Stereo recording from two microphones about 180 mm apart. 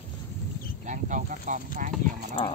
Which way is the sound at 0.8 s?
45° right (ahead or behind).